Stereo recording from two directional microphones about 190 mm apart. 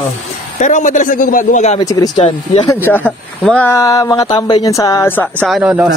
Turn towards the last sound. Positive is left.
turn(degrees=-5)  # may be behind; listen again after turning